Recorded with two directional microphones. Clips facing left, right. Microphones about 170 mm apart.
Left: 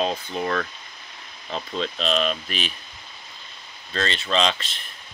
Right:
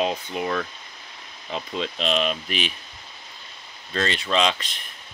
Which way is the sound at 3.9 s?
10° right (ahead or behind).